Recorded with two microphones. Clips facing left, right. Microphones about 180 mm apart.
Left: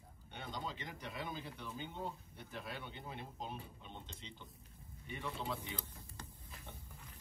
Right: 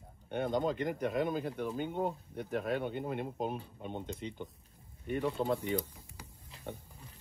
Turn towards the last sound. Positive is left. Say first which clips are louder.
# right 11 dB
turn(degrees=-50)  # may be behind; listen again after turning